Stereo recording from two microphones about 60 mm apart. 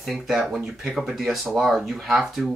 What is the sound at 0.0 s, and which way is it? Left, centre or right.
Speech, centre.